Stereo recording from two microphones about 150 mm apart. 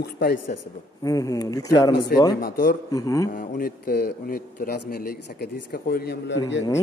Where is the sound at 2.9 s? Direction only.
25° left (ahead or behind).